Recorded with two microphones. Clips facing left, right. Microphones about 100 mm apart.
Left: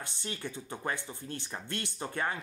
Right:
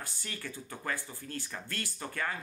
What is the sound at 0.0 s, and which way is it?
Speech, 25° left (ahead or behind).